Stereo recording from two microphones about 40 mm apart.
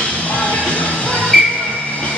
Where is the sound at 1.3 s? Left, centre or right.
Centre.